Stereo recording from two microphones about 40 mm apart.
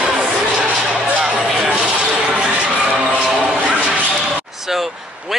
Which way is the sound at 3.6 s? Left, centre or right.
Right.